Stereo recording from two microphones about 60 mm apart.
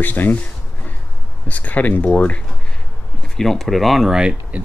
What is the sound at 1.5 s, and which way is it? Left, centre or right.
Speech, left.